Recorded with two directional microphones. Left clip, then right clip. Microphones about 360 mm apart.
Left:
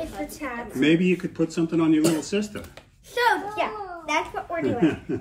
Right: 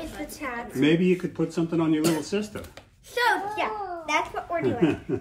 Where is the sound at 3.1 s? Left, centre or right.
Centre.